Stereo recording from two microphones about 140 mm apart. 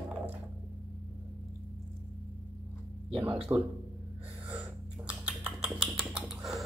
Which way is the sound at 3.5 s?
20° right (ahead or behind).